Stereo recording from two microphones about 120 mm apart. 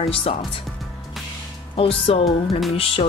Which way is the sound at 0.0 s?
50° left (ahead or behind).